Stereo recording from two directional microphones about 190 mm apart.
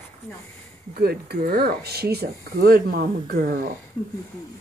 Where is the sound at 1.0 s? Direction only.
55° right (ahead or behind).